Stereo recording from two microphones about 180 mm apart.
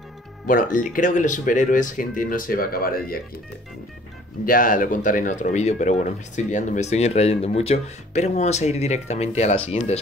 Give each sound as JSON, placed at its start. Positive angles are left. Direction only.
{"t": 0.5, "sound": "speech", "side_deg": 45}
{"t": 4.5, "sound": "speech", "side_deg": 50}